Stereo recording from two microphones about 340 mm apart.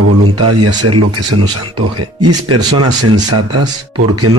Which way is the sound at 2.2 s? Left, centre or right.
Right.